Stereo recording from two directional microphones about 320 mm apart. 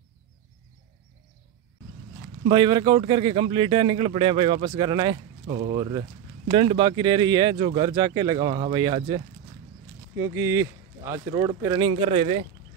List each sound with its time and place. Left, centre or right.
2.4 s speech: centre